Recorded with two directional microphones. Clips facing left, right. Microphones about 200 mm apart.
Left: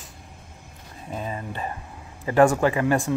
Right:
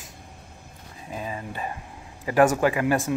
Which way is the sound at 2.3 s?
15° right (ahead or behind).